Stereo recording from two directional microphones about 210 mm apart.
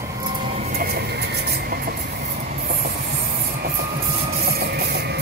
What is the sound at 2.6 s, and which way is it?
Rub, 45° right (ahead or behind).